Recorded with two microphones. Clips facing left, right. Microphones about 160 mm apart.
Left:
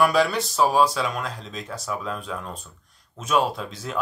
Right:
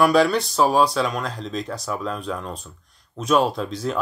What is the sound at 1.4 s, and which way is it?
Speech, 35° right (ahead or behind).